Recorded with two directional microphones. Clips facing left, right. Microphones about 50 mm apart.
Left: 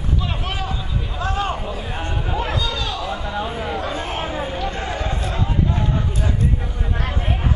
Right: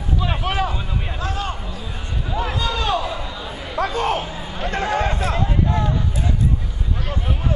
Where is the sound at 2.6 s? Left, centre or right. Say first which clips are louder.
Right 3 dB; right.